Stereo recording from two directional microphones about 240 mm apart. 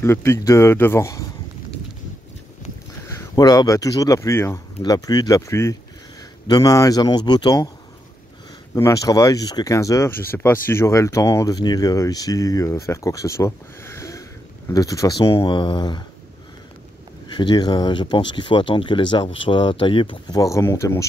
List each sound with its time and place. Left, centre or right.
0.0 s speech: centre
3.1 s speech: centre
8.7 s speech: centre
17.4 s speech: centre